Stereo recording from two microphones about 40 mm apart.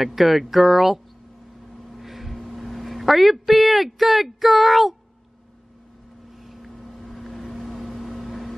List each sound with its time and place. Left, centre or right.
0.0 s speech: centre
1.7 s a sound: centre
6.4 s boat: centre